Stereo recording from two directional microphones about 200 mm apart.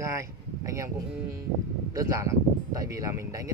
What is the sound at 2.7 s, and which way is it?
Speech, 15° right (ahead or behind).